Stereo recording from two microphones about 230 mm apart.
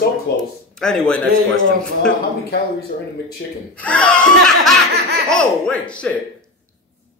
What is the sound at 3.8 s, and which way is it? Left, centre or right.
Speech, centre.